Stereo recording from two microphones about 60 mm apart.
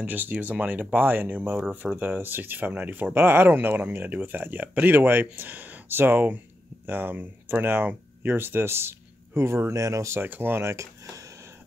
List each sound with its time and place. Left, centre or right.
0.0 s speech: right
1.6 s speech: right
10.2 s speech: right